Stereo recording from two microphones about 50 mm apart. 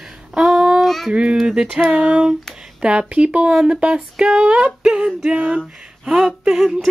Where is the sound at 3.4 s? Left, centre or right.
Centre.